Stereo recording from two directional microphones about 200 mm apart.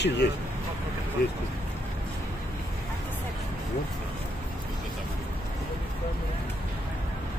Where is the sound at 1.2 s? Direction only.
50° left (ahead or behind).